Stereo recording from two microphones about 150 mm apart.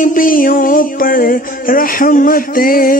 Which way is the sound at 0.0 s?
65° left (ahead or behind).